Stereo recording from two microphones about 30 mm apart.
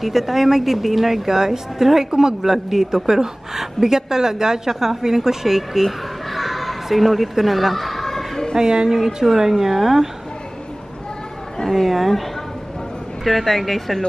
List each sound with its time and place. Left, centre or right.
0.0 s a woman's voice: centre
2.4 s a woman's voice: centre
5.6 s a sound: centre
8.5 s speech: right
8.9 s a woman's voice: centre
11.6 s speech: centre
13.2 s speech: centre